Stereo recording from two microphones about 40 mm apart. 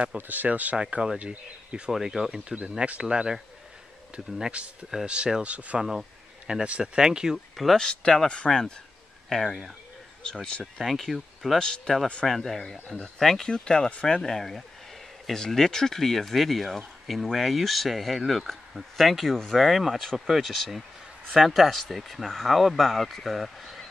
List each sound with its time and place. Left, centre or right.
0.3 s speech: right
0.7 s speech: right
1.9 s speech: centre
3.0 s speech: centre
5.0 s speech: right
5.8 s speech: centre
6.4 s speech: right
7.7 s a man's voice: left
9.3 s speech: centre
11.6 s speech: left
12.3 s a man's voice: centre
13.5 s speech: left
14.2 s a man's voice: centre
19.6 s speech: centre